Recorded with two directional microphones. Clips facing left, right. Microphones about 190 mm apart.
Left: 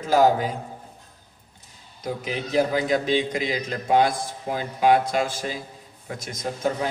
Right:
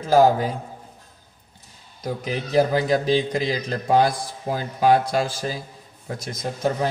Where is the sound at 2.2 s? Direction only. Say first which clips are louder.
Right 3 dB; 40° right (ahead or behind).